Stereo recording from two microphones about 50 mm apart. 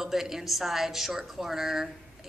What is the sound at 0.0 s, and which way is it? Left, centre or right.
A man's voice, centre.